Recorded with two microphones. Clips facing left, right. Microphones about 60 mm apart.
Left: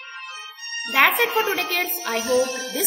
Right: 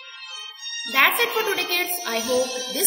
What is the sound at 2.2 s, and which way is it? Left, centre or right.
Music, left.